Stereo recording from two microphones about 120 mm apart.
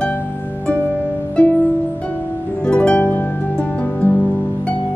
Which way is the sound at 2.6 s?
10° left (ahead or behind).